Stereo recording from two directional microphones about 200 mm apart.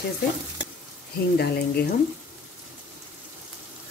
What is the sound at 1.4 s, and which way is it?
Speech, 55° left (ahead or behind).